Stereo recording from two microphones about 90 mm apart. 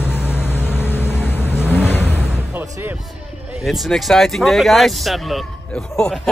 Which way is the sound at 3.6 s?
Centre (ahead or behind).